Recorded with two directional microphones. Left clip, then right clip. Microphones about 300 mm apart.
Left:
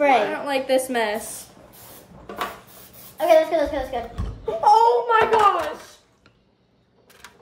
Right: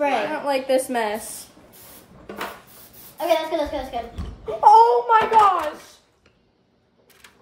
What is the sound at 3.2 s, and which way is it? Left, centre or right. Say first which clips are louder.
Speech: left 5 dB; centre.